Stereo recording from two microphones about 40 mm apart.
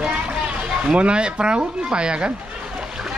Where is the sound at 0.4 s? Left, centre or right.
Right.